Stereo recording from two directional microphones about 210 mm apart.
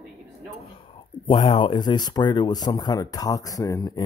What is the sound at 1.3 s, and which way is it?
Speech, 20° left (ahead or behind).